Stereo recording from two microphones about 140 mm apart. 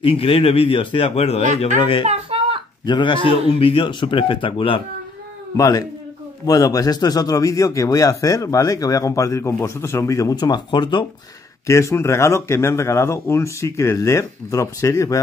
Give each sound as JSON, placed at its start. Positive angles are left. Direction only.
{"t": 0.0, "sound": "a man's voice", "side_deg": 40}
{"t": 2.0, "sound": "a sound", "side_deg": -45}
{"t": 2.8, "sound": "a man's voice", "side_deg": 35}
{"t": 5.6, "sound": "a man's voice", "side_deg": 25}
{"t": 11.6, "sound": "a man's voice", "side_deg": 20}